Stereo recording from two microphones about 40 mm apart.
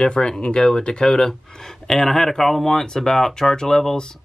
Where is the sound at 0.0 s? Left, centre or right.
Left.